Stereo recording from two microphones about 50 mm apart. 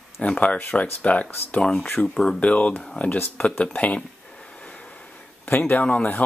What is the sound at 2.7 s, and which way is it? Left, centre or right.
Speech, centre.